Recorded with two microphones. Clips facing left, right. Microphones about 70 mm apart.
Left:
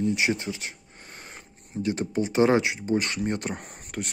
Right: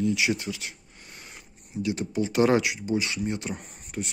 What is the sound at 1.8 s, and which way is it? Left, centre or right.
Speech, left.